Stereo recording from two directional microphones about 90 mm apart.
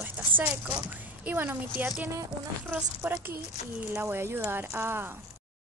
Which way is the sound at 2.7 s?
20° right (ahead or behind).